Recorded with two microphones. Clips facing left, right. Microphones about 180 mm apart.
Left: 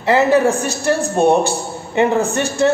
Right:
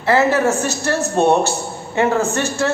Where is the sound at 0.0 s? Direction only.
15° left (ahead or behind).